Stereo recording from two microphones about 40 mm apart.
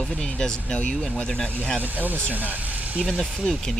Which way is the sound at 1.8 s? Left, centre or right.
Right.